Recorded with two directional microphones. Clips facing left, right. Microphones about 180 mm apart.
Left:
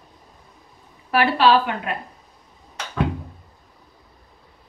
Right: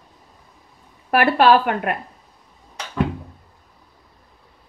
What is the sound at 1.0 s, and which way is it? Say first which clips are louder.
Speech: right 2 dB; 55° right (ahead or behind).